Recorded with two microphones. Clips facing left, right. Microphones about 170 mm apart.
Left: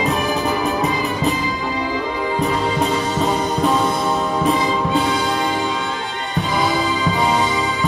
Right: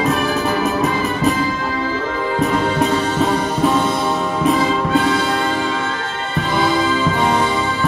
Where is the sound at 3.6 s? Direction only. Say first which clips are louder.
Right 2 dB; centre (ahead or behind).